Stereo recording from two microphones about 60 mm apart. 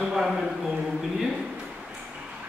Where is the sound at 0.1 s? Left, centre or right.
Centre.